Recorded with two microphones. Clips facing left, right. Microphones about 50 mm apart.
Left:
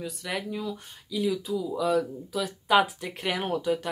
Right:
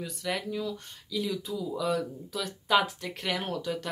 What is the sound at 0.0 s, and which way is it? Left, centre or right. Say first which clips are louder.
Speech: even; centre.